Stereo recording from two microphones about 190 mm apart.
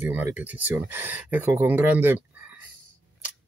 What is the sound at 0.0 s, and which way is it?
Speech, 10° right (ahead or behind).